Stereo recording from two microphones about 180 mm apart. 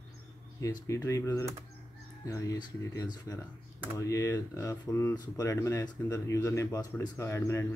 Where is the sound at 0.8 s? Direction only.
15° left (ahead or behind).